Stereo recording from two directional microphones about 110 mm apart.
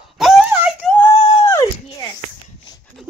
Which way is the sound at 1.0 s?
30° left (ahead or behind).